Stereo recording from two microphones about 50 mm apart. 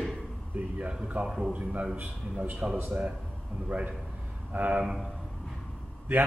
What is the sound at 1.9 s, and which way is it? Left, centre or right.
Speech, right.